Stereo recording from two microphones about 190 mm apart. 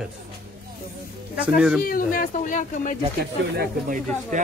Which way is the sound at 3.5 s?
55° right (ahead or behind).